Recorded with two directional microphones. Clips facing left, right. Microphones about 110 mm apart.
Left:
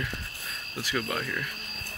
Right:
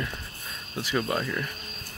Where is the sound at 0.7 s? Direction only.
25° right (ahead or behind).